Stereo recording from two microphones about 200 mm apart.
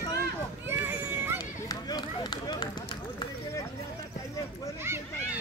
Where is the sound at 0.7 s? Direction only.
10° right (ahead or behind).